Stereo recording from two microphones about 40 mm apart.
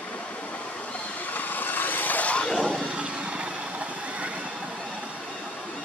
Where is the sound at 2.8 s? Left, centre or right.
Right.